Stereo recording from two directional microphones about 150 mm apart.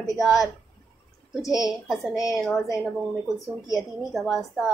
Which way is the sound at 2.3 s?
20° left (ahead or behind).